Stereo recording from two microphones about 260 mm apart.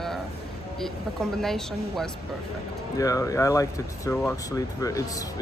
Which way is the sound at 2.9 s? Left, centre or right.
Centre.